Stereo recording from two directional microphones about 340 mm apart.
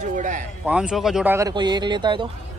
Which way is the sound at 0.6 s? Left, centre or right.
Centre.